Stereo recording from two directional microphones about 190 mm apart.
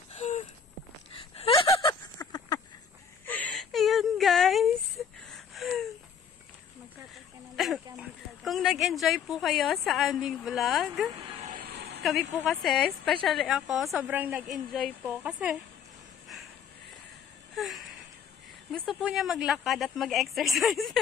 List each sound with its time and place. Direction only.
0.1 s walk: 35° left (ahead or behind)
1.1 s gasp: 30° left (ahead or behind)
2.1 s a sound: 20° left (ahead or behind)
3.3 s whimper: 10° left (ahead or behind)
5.3 s a sound: centre (ahead or behind)
7.5 s speech: centre (ahead or behind)
11.4 s vehicle: 50° right (ahead or behind)
12.0 s a woman's voice: centre (ahead or behind)
17.6 s a sound: centre (ahead or behind)
18.7 s a woman's voice: centre (ahead or behind)